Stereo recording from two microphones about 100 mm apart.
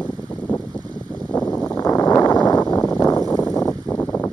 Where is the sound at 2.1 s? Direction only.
45° left (ahead or behind).